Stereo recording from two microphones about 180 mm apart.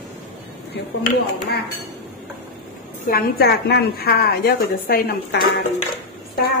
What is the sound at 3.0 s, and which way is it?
A woman's voice, 55° left (ahead or behind).